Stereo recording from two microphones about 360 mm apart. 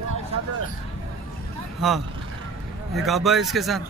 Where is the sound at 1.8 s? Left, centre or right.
Centre.